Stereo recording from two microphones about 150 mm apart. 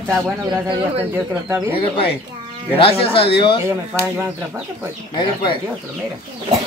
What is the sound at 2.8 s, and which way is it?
Speech, 40° left (ahead or behind).